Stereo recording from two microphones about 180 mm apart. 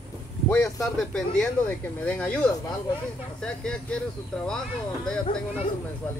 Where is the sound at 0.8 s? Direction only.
5° left (ahead or behind).